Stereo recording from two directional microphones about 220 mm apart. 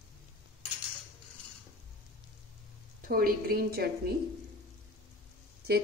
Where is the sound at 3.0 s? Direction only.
40° right (ahead or behind).